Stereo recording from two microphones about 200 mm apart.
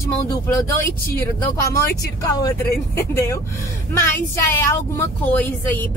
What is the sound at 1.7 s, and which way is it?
A woman's voice, 15° left (ahead or behind).